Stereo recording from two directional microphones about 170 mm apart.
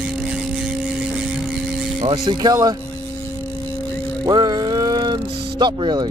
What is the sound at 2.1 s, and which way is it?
Speech, 25° right (ahead or behind).